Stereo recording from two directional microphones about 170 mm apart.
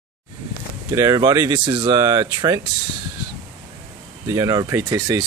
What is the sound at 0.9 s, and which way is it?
Speech, 20° right (ahead or behind).